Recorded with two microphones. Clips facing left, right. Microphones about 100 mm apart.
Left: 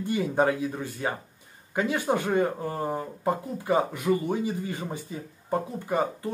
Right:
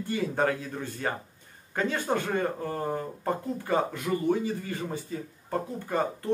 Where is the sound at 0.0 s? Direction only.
20° left (ahead or behind).